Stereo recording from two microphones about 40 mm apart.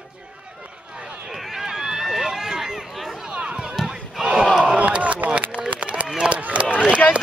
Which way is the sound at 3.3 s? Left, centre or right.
Right.